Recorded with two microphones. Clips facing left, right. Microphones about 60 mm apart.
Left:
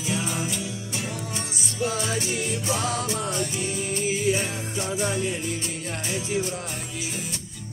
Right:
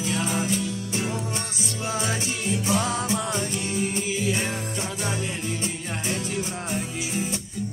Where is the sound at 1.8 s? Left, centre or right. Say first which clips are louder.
Left 1 dB; right.